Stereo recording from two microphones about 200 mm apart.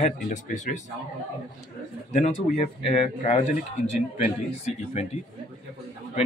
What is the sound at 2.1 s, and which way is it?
Speech, 35° left (ahead or behind).